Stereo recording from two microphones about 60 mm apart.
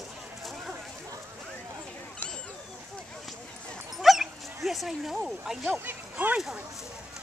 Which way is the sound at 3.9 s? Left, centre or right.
Centre.